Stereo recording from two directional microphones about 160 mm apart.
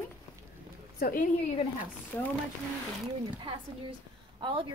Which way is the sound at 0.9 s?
65° left (ahead or behind).